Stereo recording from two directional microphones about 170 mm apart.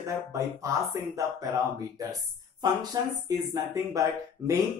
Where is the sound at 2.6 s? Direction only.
25° right (ahead or behind).